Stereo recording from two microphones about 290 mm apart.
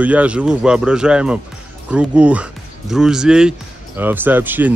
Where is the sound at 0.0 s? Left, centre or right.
Centre.